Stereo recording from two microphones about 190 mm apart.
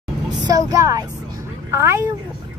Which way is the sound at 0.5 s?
20° right (ahead or behind).